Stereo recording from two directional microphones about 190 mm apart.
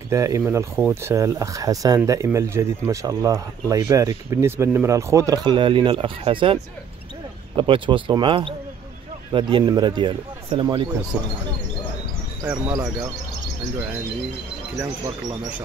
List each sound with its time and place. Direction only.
0.1 s speech: 15° right (ahead or behind)
11.1 s speech: 10° right (ahead or behind)
12.4 s speech: 10° right (ahead or behind)